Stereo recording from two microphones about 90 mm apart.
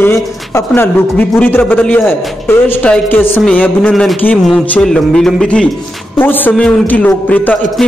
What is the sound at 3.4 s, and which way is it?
Speech, 10° left (ahead or behind).